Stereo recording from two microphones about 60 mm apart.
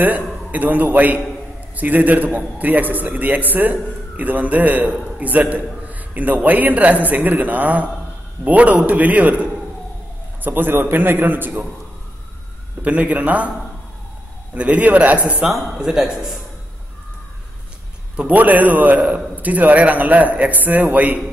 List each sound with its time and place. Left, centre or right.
0.0 s a man's voice: right
12.8 s a man's voice: right
14.5 s a man's voice: right
15.7 s a man's voice: centre
18.1 s a man's voice: right